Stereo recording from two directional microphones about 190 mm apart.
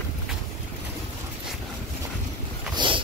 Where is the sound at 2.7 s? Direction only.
25° right (ahead or behind).